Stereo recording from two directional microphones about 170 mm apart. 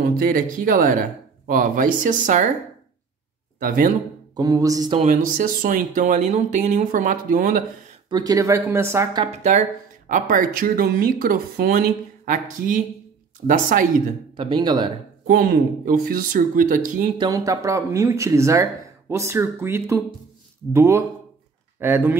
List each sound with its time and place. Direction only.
0.0 s speech: 55° right (ahead or behind)
3.5 s speech: 55° right (ahead or behind)
4.4 s music: 20° right (ahead or behind)
5.0 s speech: 50° right (ahead or behind)
8.1 s speech: 25° right (ahead or behind)
9.2 s speech: 40° right (ahead or behind)
14.3 s music: 30° right (ahead or behind)
15.2 s speech: 60° right (ahead or behind)
17.2 s speech: 20° right (ahead or behind)